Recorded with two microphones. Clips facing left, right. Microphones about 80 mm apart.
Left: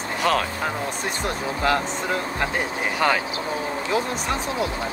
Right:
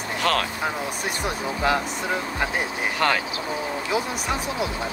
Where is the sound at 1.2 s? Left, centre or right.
Centre.